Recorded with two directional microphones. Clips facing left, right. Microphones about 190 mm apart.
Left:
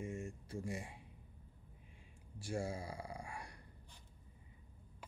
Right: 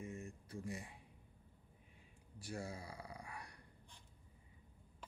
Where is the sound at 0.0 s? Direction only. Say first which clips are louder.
Left 4 dB; 25° left (ahead or behind).